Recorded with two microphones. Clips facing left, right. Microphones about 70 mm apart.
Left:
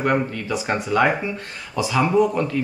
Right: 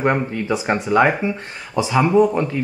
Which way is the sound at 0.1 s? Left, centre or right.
Right.